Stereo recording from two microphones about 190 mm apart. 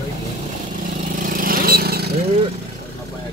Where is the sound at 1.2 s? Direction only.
45° right (ahead or behind).